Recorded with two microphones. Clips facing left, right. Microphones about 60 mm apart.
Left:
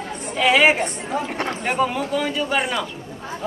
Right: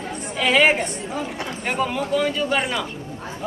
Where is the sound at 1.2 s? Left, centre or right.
Left.